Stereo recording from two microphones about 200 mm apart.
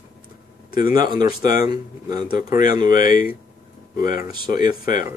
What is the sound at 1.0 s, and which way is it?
Speech, 45° left (ahead or behind).